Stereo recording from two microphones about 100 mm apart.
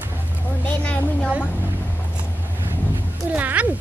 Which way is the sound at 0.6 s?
15° left (ahead or behind).